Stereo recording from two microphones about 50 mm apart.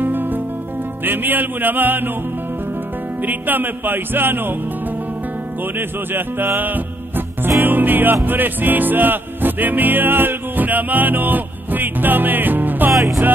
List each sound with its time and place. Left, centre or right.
0.0 s music: right
3.2 s music: right
5.8 s music: right